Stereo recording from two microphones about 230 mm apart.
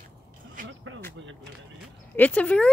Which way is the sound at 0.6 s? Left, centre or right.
Right.